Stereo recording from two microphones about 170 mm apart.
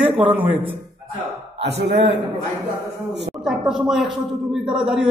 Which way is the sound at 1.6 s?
90° right.